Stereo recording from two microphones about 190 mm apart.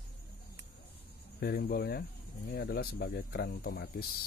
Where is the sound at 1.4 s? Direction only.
50° left (ahead or behind).